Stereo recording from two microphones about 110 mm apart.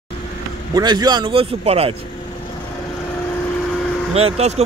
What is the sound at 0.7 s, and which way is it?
A man's voice, 35° right (ahead or behind).